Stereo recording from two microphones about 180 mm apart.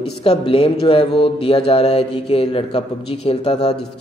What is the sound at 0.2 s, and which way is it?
Speech, 35° left (ahead or behind).